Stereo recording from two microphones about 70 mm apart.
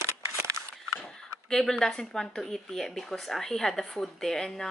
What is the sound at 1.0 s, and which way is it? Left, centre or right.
Speech, centre.